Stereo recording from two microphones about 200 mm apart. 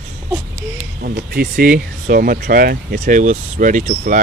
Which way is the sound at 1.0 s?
50° right (ahead or behind).